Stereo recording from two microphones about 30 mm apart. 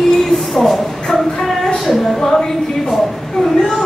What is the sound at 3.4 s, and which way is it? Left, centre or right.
Speech, left.